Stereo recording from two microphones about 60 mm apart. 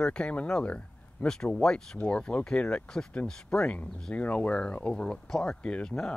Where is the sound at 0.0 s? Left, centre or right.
Centre.